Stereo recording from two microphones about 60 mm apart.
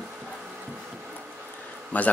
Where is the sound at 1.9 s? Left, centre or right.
Left.